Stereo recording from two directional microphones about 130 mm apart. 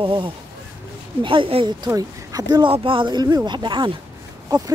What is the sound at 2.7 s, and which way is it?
Speech, 40° right (ahead or behind).